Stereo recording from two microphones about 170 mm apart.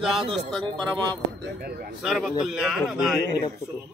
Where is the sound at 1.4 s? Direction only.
70° right (ahead or behind).